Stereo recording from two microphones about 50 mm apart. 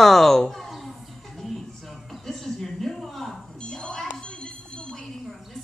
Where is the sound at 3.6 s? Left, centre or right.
Centre.